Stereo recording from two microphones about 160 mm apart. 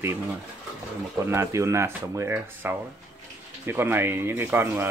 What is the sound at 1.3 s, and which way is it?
Speech, 20° right (ahead or behind).